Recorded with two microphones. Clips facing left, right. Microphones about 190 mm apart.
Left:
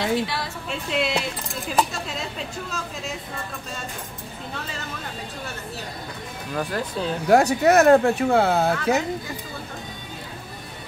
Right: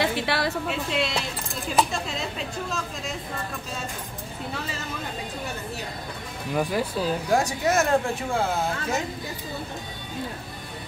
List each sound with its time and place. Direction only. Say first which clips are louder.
0.0 s a sound: left 1 dB; 65° right (ahead or behind)
0.8 s speech: left 7 dB; 5° left (ahead or behind)
6.5 s speech: right 2 dB; 10° right (ahead or behind)
7.2 s speech: left 9 dB; 65° left (ahead or behind)